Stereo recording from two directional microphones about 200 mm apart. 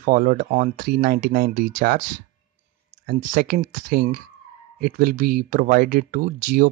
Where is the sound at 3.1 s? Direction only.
40° right (ahead or behind).